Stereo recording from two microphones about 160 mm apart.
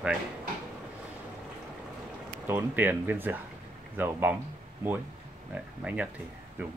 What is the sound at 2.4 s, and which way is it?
Speech, 10° right (ahead or behind).